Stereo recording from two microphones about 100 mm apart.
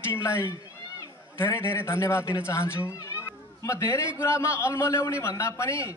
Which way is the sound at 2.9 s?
30° left (ahead or behind).